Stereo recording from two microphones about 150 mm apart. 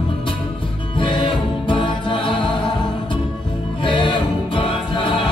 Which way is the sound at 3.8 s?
30° left (ahead or behind).